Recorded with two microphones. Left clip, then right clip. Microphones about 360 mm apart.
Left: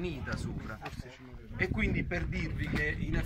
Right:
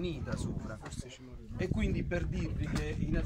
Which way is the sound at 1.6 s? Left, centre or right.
Centre.